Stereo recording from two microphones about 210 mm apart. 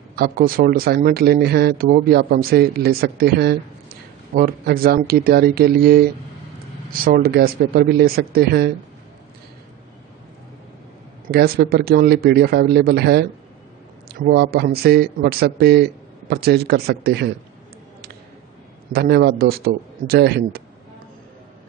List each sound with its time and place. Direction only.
0.1 s speech: 45° right (ahead or behind)
11.2 s speech: 45° right (ahead or behind)
18.9 s speech: 50° right (ahead or behind)